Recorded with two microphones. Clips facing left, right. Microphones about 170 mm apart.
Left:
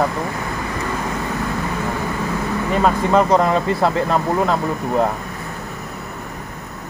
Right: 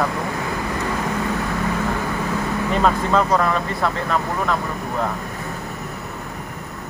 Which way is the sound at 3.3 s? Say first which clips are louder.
Left 4 dB; 25° left (ahead or behind).